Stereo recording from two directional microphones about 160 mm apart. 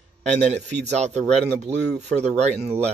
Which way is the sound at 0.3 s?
45° right (ahead or behind).